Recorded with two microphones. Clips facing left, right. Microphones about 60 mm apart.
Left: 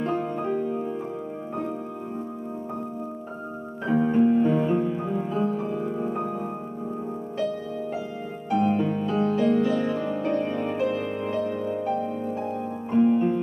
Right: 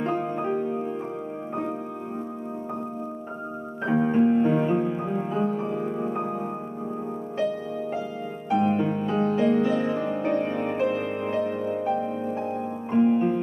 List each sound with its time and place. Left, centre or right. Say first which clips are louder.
0.0 s music: even; right
3.8 s music: even; right
8.5 s music: even; right